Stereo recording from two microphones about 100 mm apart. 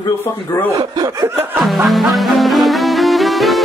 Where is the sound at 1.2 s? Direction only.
20° right (ahead or behind).